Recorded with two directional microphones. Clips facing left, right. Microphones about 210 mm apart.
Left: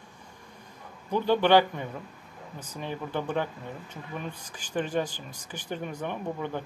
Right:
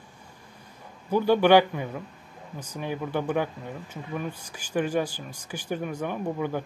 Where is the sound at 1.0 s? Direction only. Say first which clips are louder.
Right 3 dB; 10° right (ahead or behind).